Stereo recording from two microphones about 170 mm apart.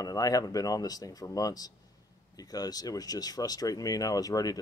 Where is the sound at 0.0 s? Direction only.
20° left (ahead or behind).